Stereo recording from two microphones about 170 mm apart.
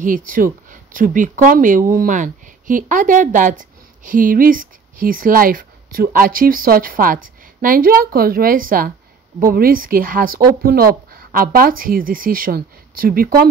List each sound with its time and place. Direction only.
0.0 s speech: 55° right (ahead or behind)